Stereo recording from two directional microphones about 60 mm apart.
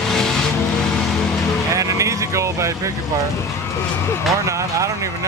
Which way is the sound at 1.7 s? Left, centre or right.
Right.